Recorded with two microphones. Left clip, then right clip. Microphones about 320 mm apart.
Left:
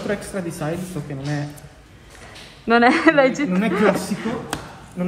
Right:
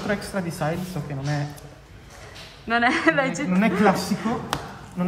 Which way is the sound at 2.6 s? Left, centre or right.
Centre.